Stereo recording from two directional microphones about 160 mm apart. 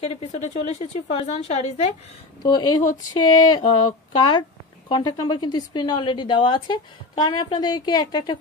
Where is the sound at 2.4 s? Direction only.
25° left (ahead or behind).